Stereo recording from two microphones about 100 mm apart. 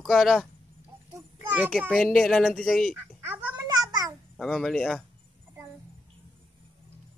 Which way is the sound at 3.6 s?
40° right (ahead or behind).